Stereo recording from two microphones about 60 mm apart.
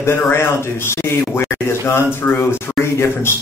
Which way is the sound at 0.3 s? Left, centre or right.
Left.